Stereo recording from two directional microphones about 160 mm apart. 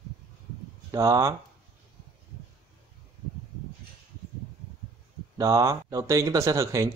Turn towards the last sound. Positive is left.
turn(degrees=-20)  # may be behind; listen again after turning